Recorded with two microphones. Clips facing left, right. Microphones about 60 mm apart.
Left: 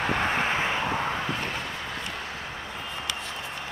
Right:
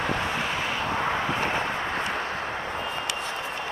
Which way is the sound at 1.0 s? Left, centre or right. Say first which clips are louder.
Right 3 dB; right.